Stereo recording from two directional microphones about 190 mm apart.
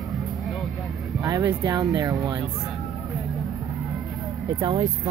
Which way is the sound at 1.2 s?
15° right (ahead or behind).